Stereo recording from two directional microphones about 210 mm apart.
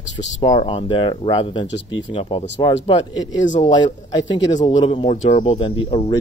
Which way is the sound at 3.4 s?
35° left (ahead or behind).